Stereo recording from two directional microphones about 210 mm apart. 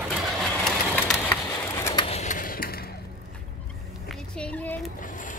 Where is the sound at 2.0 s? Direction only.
30° left (ahead or behind).